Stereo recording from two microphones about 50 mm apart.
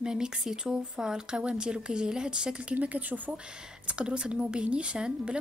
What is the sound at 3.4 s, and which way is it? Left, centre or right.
Speech, centre.